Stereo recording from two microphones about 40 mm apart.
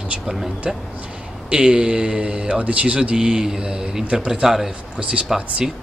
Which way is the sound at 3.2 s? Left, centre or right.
Centre.